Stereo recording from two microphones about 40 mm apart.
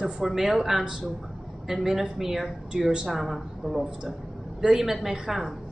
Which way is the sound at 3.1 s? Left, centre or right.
Centre.